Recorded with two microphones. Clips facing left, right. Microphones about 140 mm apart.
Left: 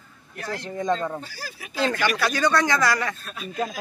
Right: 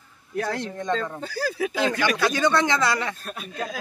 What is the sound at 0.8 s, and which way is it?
Speech, 10° left (ahead or behind).